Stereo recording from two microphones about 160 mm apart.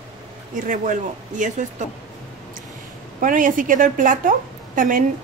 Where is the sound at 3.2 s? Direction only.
55° right (ahead or behind).